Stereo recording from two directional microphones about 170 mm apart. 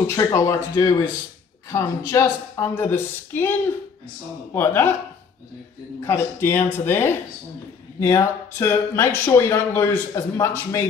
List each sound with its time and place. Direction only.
0.0 s speech: 15° left (ahead or behind)
4.6 s speech: 15° left (ahead or behind)
5.9 s speech: 15° left (ahead or behind)